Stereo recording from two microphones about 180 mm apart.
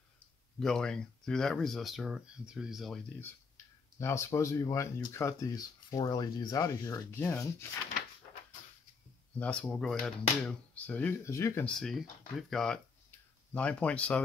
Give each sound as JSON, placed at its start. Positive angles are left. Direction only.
{"t": 0.6, "sound": "speech", "side_deg": 5}
{"t": 3.2, "sound": "speech", "side_deg": 15}
{"t": 9.4, "sound": "speech", "side_deg": 5}